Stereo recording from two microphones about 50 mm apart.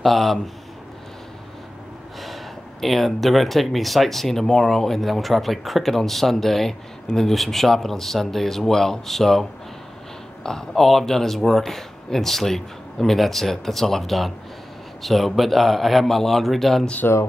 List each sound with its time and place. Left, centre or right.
0.0 s speech: centre
2.2 s speech: centre
10.7 s speech: centre
17.0 s speech: left